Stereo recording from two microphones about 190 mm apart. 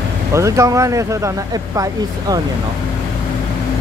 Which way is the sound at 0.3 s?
15° right (ahead or behind).